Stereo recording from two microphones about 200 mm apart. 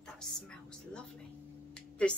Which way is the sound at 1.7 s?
5° left (ahead or behind).